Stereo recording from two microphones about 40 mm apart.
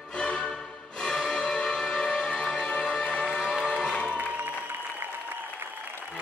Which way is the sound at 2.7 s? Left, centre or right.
Left.